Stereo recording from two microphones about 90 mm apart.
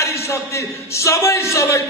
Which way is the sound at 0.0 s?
30° left (ahead or behind).